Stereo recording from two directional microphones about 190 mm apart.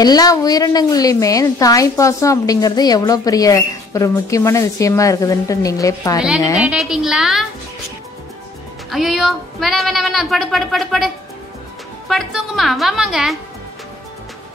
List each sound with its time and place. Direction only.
0.0 s a woman's voice: 20° left (ahead or behind)
6.6 s speech: 5° right (ahead or behind)
8.9 s speech: centre (ahead or behind)
12.1 s speech: centre (ahead or behind)